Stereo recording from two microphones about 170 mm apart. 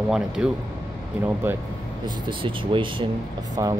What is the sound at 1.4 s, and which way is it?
Speech, 15° right (ahead or behind).